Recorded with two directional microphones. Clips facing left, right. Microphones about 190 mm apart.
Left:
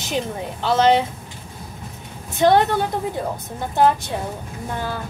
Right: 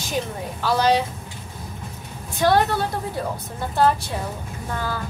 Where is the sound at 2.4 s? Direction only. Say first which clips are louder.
Left 3 dB; 20° left (ahead or behind).